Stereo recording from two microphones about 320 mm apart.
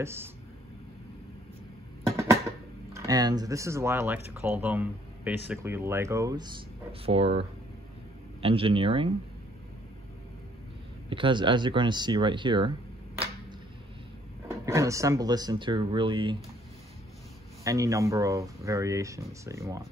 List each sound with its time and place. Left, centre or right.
0.0 s speech: centre
2.9 s speech: centre
11.1 s speech: centre
14.5 s speech: centre
17.6 s speech: centre